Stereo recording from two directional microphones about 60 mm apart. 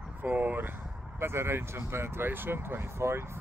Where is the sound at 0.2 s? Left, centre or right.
Right.